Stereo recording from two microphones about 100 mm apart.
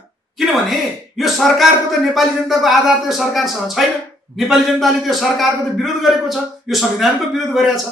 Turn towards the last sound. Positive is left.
turn(degrees=0)  # may be behind; listen again after turning